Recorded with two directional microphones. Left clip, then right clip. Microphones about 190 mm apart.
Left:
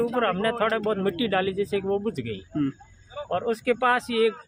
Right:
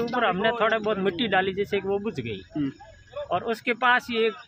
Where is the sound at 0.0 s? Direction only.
Centre (ahead or behind).